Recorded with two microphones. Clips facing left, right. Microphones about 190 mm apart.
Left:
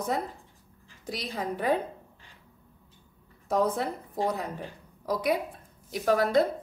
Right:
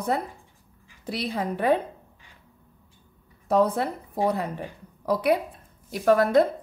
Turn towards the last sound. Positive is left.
turn(degrees=-55)  # may be behind; listen again after turning